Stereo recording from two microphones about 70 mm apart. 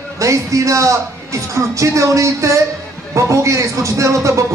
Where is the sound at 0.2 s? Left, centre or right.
Right.